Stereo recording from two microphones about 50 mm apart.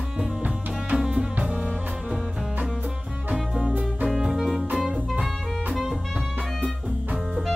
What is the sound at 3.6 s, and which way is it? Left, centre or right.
Music, right.